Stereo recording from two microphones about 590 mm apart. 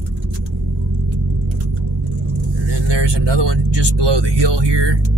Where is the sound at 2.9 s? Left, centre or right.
Right.